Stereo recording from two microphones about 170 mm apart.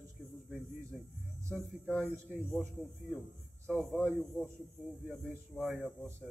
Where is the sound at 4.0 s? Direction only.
10° left (ahead or behind).